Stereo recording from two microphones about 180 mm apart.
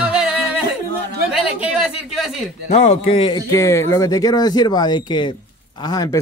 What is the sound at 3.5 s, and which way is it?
Speech, 15° left (ahead or behind).